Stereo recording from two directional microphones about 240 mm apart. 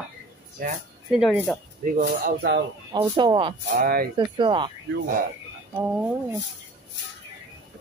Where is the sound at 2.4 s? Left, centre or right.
Right.